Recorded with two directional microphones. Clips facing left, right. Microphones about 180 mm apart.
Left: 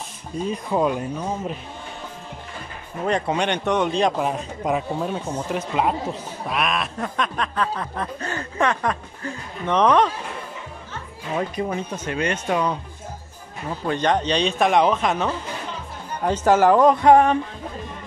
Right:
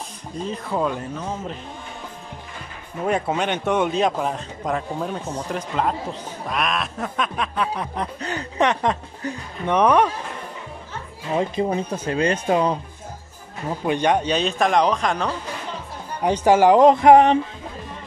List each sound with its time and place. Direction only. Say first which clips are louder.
0.5 s speech: left 2 dB; 15° left (ahead or behind)
3.1 s snicker: even; 5° right (ahead or behind)
4.2 s speech: left 1 dB; 5° left (ahead or behind)
6.5 s snicker: even; centre (ahead or behind)
11.3 s speech: right 3 dB; 30° right (ahead or behind)
13.7 s a man's voice: right 2 dB; 15° right (ahead or behind); by 15.3 s 5° left (ahead or behind)
16.2 s snicker: right 1 dB; 15° right (ahead or behind)
16.8 s a sound: right 2 dB; 25° right (ahead or behind)